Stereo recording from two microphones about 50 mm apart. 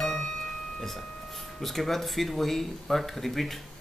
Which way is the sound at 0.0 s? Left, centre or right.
Centre.